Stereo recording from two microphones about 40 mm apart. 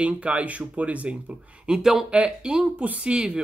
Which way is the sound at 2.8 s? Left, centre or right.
Right.